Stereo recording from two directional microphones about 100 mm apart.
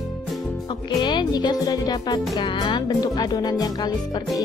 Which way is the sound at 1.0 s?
50° left (ahead or behind).